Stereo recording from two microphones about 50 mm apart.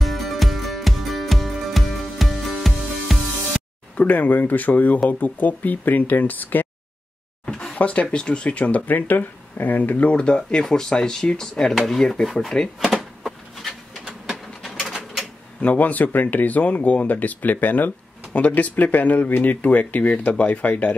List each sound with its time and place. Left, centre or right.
0.0 s music: centre
3.9 s speech: left
7.4 s a sound: centre
7.7 s speech: left
10.1 s speech: centre
12.8 s a sound: centre
14.6 s mechanisms: centre
15.6 s speech: left